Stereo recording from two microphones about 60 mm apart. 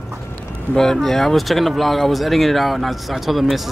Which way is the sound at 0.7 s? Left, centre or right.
Centre.